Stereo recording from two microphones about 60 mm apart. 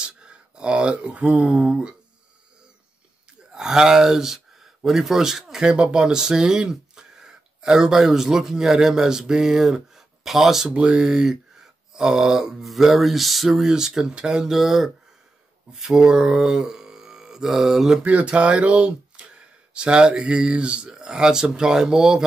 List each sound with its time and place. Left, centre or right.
0.0 s speech: centre
3.5 s speech: centre
10.7 s speech: centre
18.0 s speech: right